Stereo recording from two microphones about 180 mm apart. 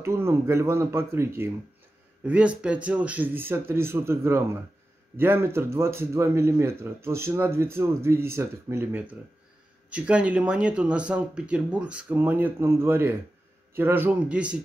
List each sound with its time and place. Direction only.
0.0 s speech: 15° right (ahead or behind)